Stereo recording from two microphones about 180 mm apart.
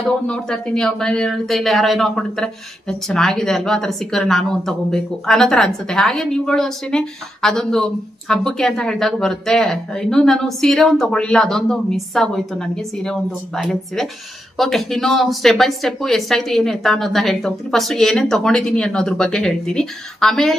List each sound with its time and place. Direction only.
0.3 s speech: 5° left (ahead or behind)